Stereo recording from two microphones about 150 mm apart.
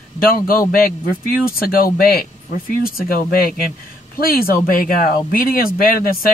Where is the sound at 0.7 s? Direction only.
75° left (ahead or behind).